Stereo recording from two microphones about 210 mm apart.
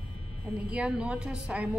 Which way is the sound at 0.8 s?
5° right (ahead or behind).